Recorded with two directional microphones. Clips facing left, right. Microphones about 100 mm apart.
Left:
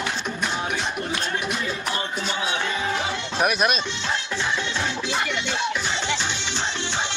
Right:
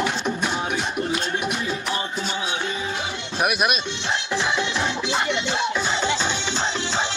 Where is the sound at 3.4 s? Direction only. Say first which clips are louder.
Even; 10° right (ahead or behind).